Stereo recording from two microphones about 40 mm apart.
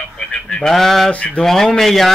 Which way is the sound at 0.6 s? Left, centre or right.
Centre.